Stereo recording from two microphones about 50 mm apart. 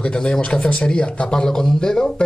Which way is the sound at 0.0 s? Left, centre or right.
Centre.